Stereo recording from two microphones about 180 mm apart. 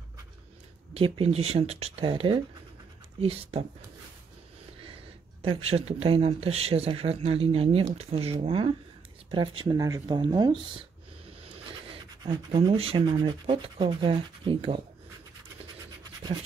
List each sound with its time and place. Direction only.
0.9 s speech: 30° right (ahead or behind)
5.4 s speech: 30° right (ahead or behind)
12.2 s speech: 25° right (ahead or behind)